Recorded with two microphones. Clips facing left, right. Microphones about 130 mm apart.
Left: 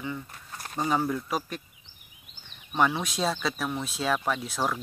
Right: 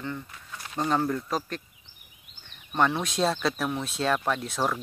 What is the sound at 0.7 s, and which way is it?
Speech, 5° left (ahead or behind).